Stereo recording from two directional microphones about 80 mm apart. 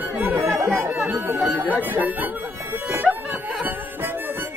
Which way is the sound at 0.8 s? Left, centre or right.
Right.